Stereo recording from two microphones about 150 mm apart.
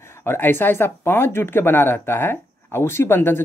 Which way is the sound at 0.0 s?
15° left (ahead or behind).